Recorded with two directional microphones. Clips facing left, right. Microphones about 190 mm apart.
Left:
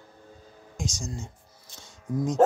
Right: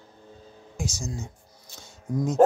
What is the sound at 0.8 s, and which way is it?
Speech, 5° right (ahead or behind).